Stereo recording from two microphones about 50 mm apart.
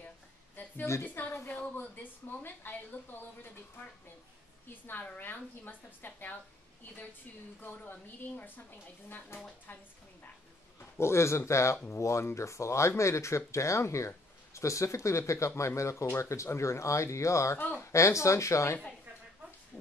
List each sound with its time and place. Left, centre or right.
1.0 s a woman's voice: left
4.9 s a woman's voice: left
7.6 s a woman's voice: left
9.3 s a woman's voice: left
10.8 s speech: left
17.6 s a woman's voice: left
17.9 s speech: left